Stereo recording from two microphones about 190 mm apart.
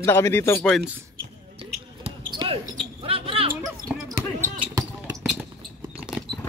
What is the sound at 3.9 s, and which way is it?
Basketball bounce, 5° right (ahead or behind).